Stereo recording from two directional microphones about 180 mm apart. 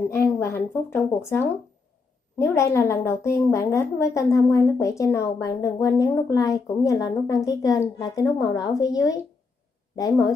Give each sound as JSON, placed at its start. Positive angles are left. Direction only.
{"t": 0.1, "sound": "speech", "side_deg": 15}